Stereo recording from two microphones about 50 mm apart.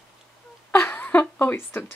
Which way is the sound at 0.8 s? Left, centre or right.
Left.